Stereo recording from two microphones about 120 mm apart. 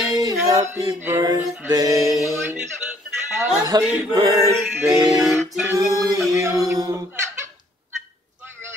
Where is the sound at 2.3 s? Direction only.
20° right (ahead or behind).